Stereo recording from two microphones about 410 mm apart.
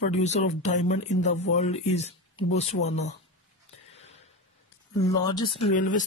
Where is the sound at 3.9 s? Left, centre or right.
Centre.